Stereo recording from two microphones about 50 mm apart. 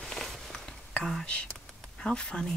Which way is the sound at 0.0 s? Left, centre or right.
Centre.